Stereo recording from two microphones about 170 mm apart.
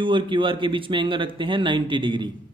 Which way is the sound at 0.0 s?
30° right (ahead or behind).